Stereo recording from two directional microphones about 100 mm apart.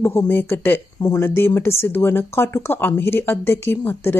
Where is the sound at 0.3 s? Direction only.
20° left (ahead or behind).